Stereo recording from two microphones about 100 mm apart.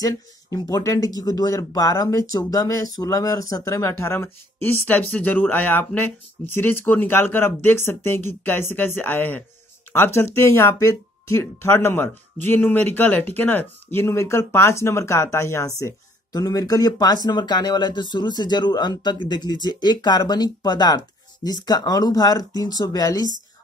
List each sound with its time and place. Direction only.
0.0 s speech: 35° left (ahead or behind)